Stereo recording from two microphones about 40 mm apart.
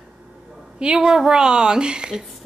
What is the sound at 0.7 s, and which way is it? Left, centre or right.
Speech, right.